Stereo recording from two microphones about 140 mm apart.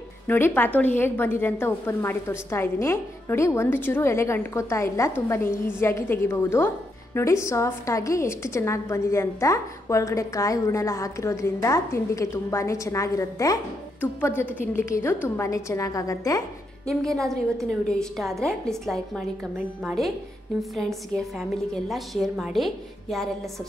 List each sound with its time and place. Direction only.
0.3 s a woman's voice: 15° left (ahead or behind)
16.8 s a woman's voice: 5° left (ahead or behind)